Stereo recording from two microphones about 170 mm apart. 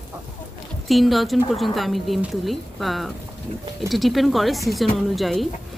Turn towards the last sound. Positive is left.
turn(degrees=0)  # may be behind; listen again after turning